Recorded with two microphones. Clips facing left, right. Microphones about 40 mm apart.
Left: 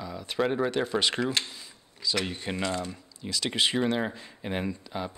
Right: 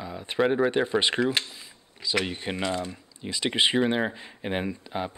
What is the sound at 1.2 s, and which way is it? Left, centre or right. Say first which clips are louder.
Speech: right 3 dB; centre.